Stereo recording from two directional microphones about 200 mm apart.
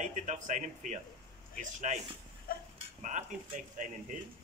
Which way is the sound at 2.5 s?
45° left (ahead or behind).